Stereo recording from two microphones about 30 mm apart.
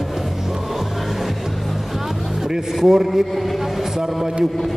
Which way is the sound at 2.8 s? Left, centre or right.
Centre.